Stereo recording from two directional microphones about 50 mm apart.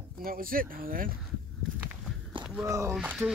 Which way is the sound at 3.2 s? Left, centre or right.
Right.